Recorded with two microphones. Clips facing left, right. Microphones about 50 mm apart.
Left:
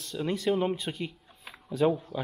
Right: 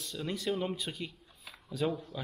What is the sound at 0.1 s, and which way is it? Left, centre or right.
Speech, centre.